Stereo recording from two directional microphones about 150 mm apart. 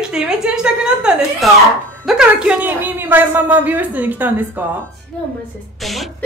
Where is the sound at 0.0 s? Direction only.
5° right (ahead or behind).